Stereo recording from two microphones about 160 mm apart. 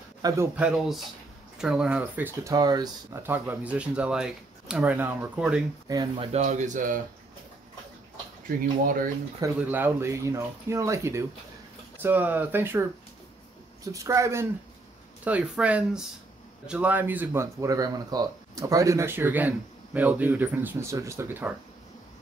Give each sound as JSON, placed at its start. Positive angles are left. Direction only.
{"t": 0.2, "sound": "speech", "side_deg": -25}
{"t": 0.6, "sound": "speech", "side_deg": -5}
{"t": 2.5, "sound": "speech", "side_deg": -25}
{"t": 5.9, "sound": "speech", "side_deg": -25}
{"t": 6.3, "sound": "a man's voice", "side_deg": -50}
{"t": 8.5, "sound": "speech", "side_deg": -60}
{"t": 9.6, "sound": "speech", "side_deg": -10}
{"t": 13.9, "sound": "speech", "side_deg": -20}